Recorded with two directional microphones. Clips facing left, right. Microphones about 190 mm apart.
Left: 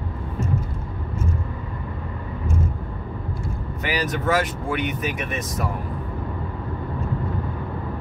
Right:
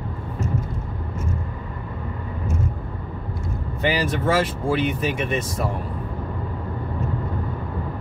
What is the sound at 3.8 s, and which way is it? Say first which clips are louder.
Speech: right 3 dB; 30° right (ahead or behind).